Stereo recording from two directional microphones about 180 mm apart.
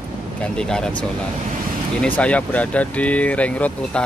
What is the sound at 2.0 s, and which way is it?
Speech, 5° left (ahead or behind).